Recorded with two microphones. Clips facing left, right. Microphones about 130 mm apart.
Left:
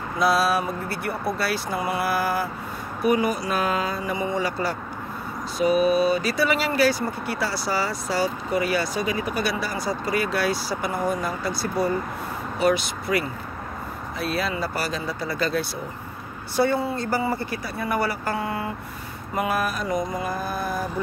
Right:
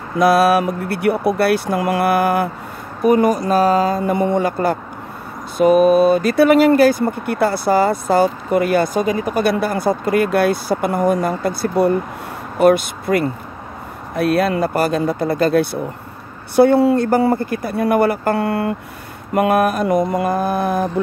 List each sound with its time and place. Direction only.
0.2 s speech: 65° right (ahead or behind)
3.0 s speech: 45° right (ahead or behind)
4.0 s speech: 60° right (ahead or behind)